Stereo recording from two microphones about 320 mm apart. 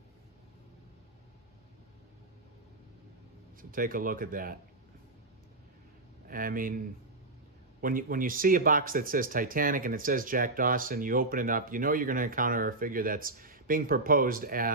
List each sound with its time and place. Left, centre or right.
3.7 s speech: right
6.2 s a man's voice: right
7.8 s speech: right